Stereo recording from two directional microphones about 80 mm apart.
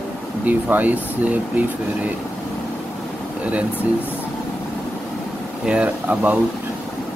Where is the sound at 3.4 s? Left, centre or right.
Centre.